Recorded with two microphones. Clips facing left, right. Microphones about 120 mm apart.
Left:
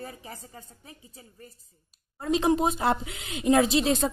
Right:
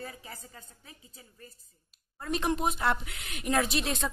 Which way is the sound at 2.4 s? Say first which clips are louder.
Left 4 dB; 30° left (ahead or behind).